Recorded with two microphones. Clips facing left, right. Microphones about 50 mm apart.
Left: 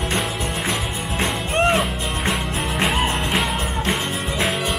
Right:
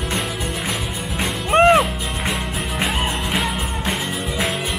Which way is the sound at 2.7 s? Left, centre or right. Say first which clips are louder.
Left 2 dB; centre.